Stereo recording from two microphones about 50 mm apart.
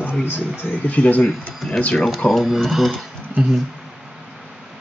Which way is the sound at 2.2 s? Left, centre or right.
Left.